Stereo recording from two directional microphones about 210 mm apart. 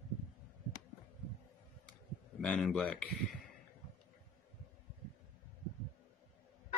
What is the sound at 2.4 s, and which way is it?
Speech, centre (ahead or behind).